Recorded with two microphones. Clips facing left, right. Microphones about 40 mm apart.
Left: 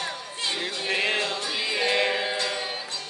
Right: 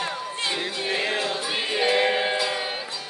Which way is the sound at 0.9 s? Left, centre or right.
Left.